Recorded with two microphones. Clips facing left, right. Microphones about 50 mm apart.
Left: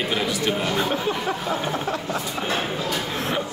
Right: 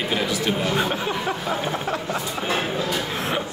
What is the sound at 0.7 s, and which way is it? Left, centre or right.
Speech, centre.